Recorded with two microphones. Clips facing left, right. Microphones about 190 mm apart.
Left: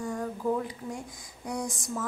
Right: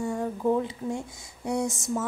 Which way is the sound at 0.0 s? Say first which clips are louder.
Right 4 dB; 25° right (ahead or behind).